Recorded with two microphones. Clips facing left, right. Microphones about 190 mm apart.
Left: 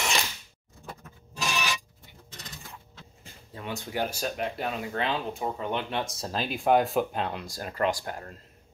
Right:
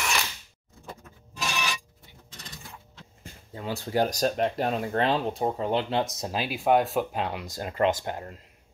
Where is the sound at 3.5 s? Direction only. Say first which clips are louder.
Right 5 dB; 30° right (ahead or behind).